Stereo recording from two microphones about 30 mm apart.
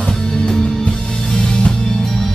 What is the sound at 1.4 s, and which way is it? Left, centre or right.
Music, left.